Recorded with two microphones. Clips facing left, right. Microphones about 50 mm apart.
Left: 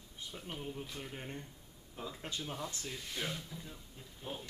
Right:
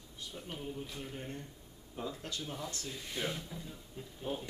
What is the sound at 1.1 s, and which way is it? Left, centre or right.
Speech, centre.